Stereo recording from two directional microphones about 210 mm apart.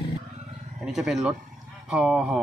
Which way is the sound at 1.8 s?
5° right (ahead or behind).